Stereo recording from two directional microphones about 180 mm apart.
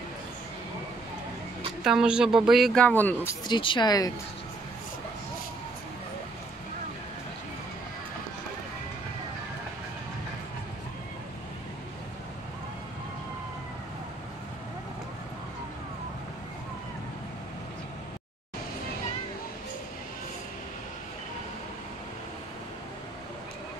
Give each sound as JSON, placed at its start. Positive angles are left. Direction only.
{"t": 1.9, "sound": "speech", "side_deg": -5}
{"t": 3.4, "sound": "speech", "side_deg": 25}